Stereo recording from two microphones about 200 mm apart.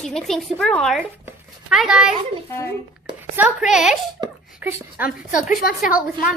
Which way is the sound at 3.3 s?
5° right (ahead or behind).